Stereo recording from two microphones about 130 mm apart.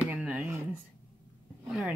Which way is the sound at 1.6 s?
5° right (ahead or behind).